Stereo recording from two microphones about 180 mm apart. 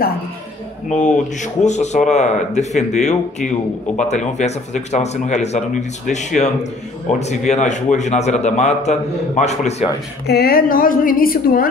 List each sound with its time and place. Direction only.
0.8 s speech: 40° left (ahead or behind)
10.2 s a woman's voice: 60° left (ahead or behind)